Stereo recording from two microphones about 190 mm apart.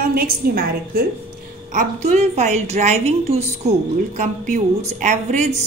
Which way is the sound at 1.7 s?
35° right (ahead or behind).